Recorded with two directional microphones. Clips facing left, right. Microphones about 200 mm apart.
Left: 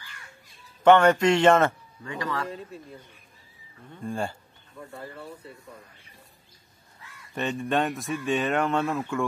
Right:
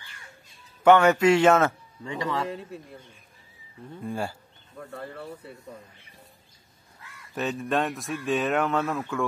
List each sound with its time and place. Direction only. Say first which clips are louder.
0.8 s a man's voice: even; 10° right (ahead or behind)
2.0 s speech: right 2 dB; 25° right (ahead or behind)
4.0 s a man's voice: left 1 dB; 5° right (ahead or behind)
7.3 s speech: even; centre (ahead or behind)